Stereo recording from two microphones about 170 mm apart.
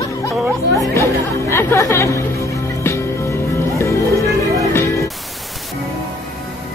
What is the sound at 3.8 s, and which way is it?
Music, 15° left (ahead or behind).